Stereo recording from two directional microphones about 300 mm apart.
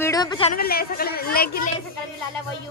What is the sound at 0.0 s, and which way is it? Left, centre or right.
Speech, centre.